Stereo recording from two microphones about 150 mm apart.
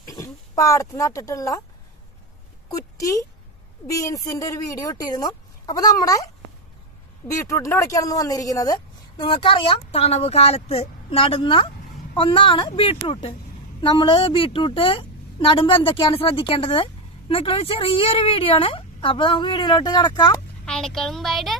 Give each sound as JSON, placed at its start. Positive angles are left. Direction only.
{"t": 0.1, "sound": "speech", "side_deg": 20}
{"t": 3.0, "sound": "speech", "side_deg": 20}
{"t": 7.2, "sound": "a woman's voice", "side_deg": 20}
{"t": 20.6, "sound": "a sound", "side_deg": 5}